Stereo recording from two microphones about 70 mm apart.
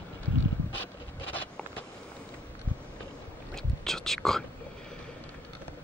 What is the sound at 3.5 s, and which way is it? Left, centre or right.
Whispering, centre.